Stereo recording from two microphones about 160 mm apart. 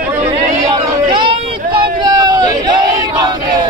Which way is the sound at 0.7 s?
30° right (ahead or behind).